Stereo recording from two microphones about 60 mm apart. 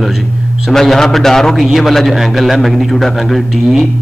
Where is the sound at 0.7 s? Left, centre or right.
Centre.